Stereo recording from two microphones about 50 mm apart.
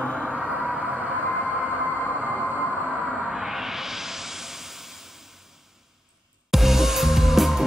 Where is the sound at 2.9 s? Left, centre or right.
Centre.